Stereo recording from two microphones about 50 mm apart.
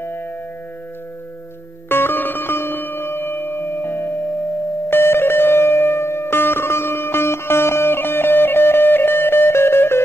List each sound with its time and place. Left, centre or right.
1.9 s music: left